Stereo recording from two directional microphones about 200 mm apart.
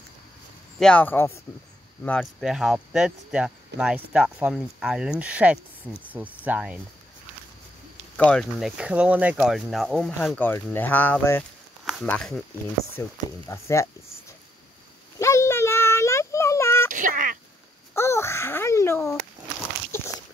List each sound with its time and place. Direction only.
0.7 s speech: 5° left (ahead or behind)
8.2 s speech: 5° left (ahead or behind)
13.0 s speech: 15° left (ahead or behind)
15.1 s a sound: 15° left (ahead or behind)
16.9 s a sound: 40° right (ahead or behind)
17.9 s babbling: 15° left (ahead or behind)